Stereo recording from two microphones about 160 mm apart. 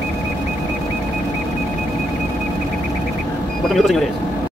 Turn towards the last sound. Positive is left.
turn(degrees=0)  # may be behind; listen again after turning